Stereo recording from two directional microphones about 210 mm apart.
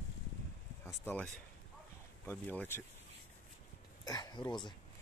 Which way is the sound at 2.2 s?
10° left (ahead or behind).